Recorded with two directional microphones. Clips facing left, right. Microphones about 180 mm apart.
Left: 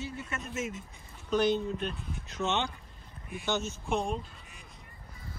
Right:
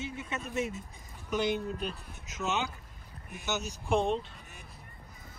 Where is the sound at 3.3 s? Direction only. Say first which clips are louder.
Left 3 dB; 45° right (ahead or behind).